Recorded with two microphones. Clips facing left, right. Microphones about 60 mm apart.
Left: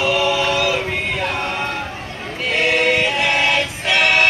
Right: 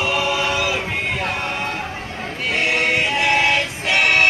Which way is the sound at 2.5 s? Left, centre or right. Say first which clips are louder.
Left 3 dB; right.